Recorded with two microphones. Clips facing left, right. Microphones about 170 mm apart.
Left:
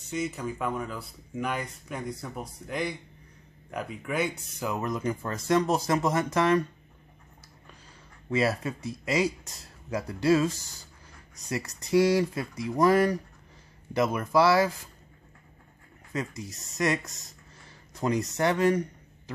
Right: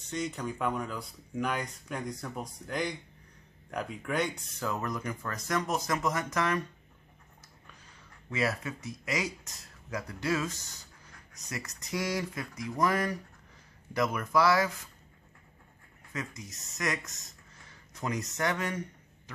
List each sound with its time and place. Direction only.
0.1 s speech: 5° left (ahead or behind); by 6.6 s 30° left (ahead or behind)
8.3 s speech: 30° left (ahead or behind)
16.1 s speech: 30° left (ahead or behind)